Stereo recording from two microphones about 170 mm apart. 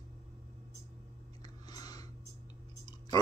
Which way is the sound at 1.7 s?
25° left (ahead or behind).